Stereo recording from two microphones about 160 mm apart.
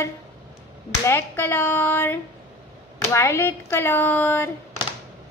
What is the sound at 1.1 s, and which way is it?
Speech, 15° left (ahead or behind).